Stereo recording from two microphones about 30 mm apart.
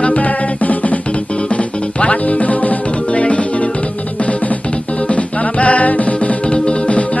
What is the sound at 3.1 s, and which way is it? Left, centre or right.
Music, left.